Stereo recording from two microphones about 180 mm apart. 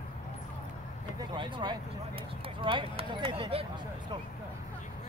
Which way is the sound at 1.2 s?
25° right (ahead or behind).